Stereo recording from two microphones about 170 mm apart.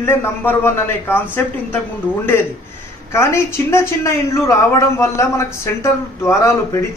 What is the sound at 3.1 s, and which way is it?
A man's voice, 15° left (ahead or behind).